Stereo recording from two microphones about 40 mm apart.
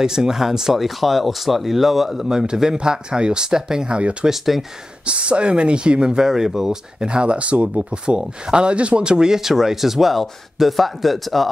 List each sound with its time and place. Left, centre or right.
0.0 s speech: centre
2.2 s speech: centre
3.9 s speech: right
4.3 s speech: centre
5.0 s speech: right
7.1 s speech: right; by 11.4 s centre